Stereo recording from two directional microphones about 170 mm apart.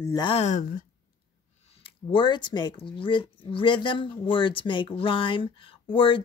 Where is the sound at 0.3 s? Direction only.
40° left (ahead or behind).